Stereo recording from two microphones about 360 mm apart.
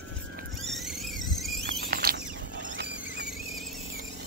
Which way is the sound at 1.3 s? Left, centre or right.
Centre.